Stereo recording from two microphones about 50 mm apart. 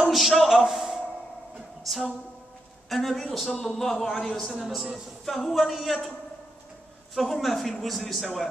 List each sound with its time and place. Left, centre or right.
0.0 s a man's voice: centre
0.7 s a sound: centre
1.9 s a man's voice: centre
7.2 s a man's voice: centre